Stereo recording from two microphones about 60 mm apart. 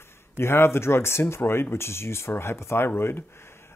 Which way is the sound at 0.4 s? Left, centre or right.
Left.